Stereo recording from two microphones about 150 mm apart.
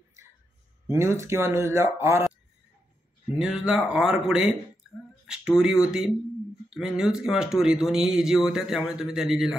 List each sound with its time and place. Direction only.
0.9 s speech: 15° right (ahead or behind)
3.3 s speech: 5° right (ahead or behind)
5.2 s a sound: 5° right (ahead or behind)
5.6 s speech: 5° right (ahead or behind)